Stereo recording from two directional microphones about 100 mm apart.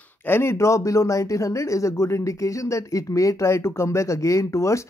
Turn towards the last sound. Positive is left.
turn(degrees=30)  # may be behind; listen again after turning